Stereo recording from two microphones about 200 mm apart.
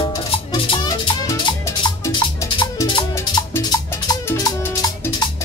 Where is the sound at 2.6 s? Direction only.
20° left (ahead or behind).